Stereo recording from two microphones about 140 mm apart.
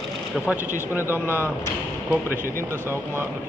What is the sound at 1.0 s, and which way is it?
Speech, 15° right (ahead or behind).